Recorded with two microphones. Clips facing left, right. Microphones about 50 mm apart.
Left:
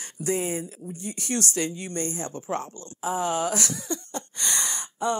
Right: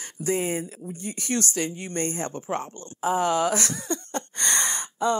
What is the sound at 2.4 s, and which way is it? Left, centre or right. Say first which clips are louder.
Speech: left 1 dB; right.